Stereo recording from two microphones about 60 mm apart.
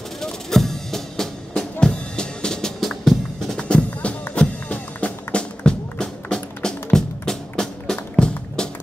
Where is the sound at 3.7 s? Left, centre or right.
Centre.